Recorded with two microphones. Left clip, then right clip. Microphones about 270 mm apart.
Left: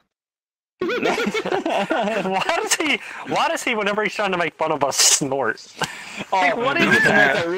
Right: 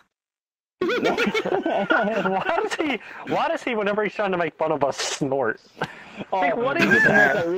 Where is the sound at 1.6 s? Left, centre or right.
Left.